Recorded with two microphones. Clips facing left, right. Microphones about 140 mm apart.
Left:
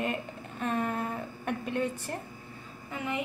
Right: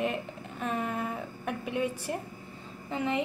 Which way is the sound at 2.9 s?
25° right (ahead or behind).